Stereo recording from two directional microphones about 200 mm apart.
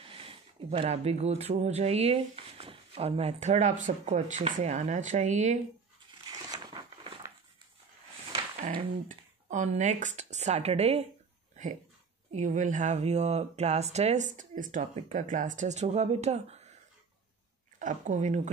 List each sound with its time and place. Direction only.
0.0 s speech: 25° right (ahead or behind)
6.2 s crumpling: 20° right (ahead or behind)
9.5 s speech: 40° right (ahead or behind)
17.7 s speech: 40° right (ahead or behind)